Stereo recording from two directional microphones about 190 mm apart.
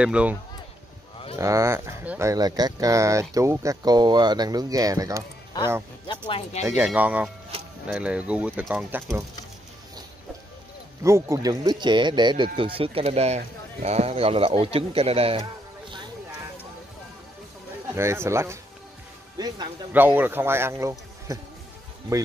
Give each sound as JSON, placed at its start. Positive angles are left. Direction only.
{"t": 0.0, "sound": "speech", "side_deg": -5}
{"t": 1.4, "sound": "speech", "side_deg": -15}
{"t": 6.0, "sound": "speech", "side_deg": 25}
{"t": 6.6, "sound": "speech", "side_deg": -15}
{"t": 11.1, "sound": "speech", "side_deg": -15}
{"t": 17.9, "sound": "a man's voice", "side_deg": -15}
{"t": 19.9, "sound": "speech", "side_deg": -10}